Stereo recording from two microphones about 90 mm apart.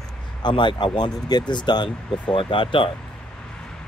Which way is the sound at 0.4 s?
60° left (ahead or behind).